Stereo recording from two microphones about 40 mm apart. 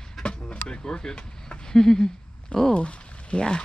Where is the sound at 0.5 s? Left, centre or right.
Left.